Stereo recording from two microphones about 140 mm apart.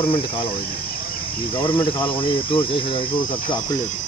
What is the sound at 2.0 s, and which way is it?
Speech, 40° left (ahead or behind).